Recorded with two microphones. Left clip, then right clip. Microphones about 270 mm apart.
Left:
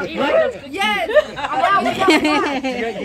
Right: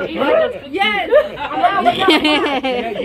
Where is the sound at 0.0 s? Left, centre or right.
Centre.